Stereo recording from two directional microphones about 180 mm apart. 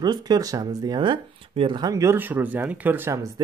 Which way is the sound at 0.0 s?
25° right (ahead or behind).